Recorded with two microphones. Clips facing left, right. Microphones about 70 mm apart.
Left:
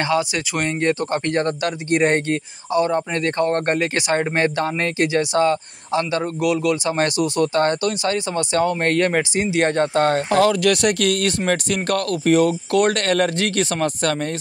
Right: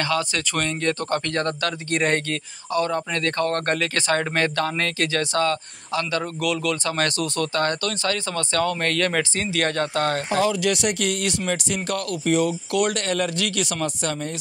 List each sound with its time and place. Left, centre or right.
0.0 s speech: centre
10.3 s speech: left